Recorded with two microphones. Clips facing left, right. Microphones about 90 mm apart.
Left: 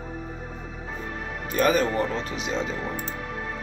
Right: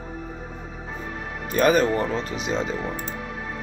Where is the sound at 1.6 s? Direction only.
65° right (ahead or behind).